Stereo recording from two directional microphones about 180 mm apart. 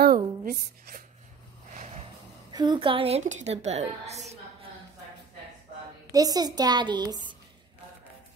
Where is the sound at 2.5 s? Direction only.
25° right (ahead or behind).